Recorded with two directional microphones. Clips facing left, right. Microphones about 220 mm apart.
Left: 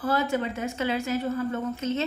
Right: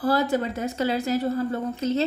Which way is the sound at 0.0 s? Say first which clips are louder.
Right 3 dB; 35° right (ahead or behind).